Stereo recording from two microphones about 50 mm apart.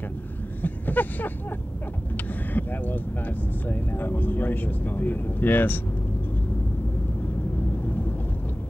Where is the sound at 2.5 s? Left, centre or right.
Left.